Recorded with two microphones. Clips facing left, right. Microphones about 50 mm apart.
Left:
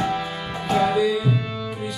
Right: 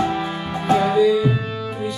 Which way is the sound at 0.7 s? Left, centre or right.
Centre.